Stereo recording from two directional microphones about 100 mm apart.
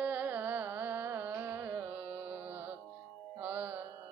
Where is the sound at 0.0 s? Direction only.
15° right (ahead or behind).